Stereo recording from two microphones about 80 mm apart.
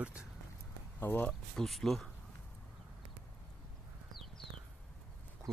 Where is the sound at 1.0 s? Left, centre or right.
Left.